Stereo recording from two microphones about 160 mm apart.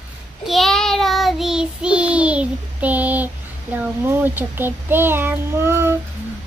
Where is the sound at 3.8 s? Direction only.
15° right (ahead or behind).